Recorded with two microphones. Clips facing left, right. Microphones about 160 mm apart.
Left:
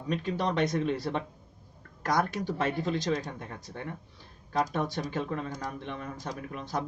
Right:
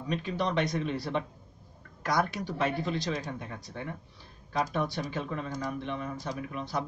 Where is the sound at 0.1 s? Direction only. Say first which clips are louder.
Left 1 dB; 45° left (ahead or behind).